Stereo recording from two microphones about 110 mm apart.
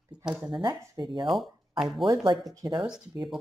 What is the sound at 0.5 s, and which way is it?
Speech, 40° right (ahead or behind).